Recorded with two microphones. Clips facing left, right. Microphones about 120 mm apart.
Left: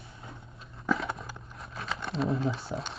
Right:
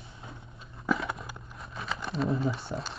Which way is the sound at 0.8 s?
Centre (ahead or behind).